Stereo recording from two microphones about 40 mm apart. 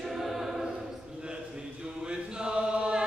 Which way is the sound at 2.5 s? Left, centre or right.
Right.